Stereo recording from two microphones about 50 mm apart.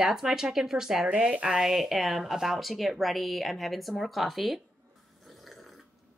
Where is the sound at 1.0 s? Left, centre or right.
Right.